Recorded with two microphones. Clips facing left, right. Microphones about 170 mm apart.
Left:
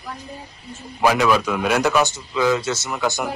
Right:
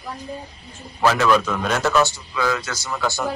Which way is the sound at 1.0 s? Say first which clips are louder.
Even; 10° left (ahead or behind).